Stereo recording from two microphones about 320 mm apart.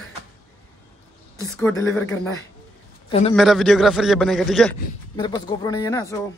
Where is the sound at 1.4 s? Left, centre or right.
Centre.